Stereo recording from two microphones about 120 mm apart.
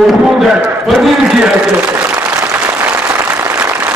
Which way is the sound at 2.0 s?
15° right (ahead or behind).